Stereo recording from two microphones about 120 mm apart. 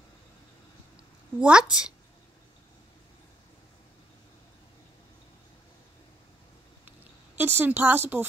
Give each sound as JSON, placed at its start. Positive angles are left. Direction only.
{"t": 1.4, "sound": "a woman's voice", "side_deg": -10}
{"t": 7.3, "sound": "a woman's voice", "side_deg": -20}